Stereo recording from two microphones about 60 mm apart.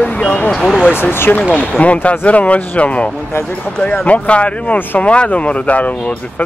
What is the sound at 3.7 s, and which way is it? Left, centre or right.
Speech, centre.